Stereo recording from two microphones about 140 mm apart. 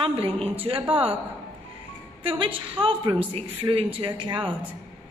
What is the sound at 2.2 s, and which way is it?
A woman's voice, 40° right (ahead or behind).